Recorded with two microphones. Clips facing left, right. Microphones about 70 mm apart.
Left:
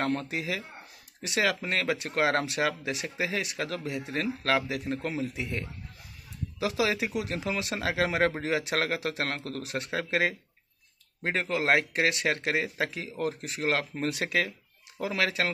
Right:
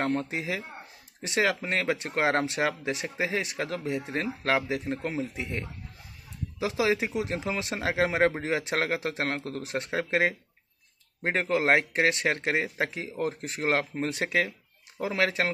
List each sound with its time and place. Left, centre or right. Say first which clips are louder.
0.0 s speech: right 1 dB; right